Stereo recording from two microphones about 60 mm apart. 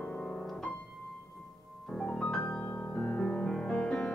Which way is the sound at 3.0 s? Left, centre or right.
Centre.